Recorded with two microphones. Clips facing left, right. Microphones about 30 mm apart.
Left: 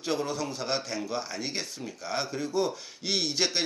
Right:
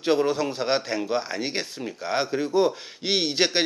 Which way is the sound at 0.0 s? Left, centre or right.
Right.